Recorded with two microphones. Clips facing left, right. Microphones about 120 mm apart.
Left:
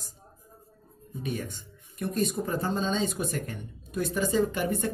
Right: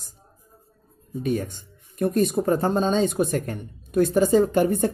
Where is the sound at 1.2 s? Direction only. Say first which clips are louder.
Right 8 dB; 40° right (ahead or behind).